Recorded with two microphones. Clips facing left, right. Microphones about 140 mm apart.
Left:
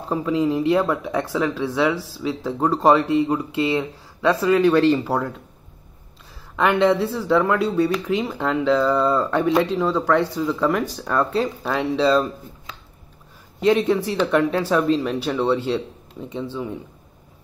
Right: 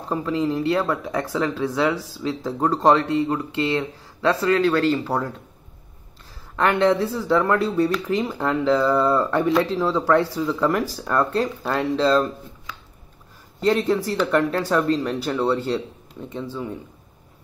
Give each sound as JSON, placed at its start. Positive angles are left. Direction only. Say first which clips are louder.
{"t": 0.1, "sound": "speech", "louder": "left 2 dB", "side_deg": 5}
{"t": 6.5, "sound": "speech", "louder": "left 1 dB", "side_deg": 5}
{"t": 13.6, "sound": "speech", "louder": "left 2 dB", "side_deg": 5}